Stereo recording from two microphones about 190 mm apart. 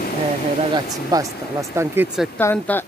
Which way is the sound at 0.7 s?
20° right (ahead or behind).